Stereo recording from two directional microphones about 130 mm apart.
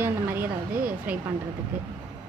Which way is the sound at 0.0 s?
15° right (ahead or behind).